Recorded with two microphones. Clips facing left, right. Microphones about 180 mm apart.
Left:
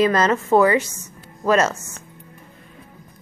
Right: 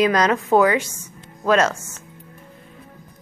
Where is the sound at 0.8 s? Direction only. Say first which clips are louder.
Even; 10° right (ahead or behind).